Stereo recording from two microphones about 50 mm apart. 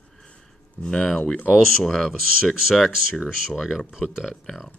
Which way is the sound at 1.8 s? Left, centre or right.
Centre.